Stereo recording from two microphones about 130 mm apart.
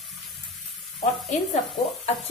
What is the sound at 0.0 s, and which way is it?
Water, centre (ahead or behind).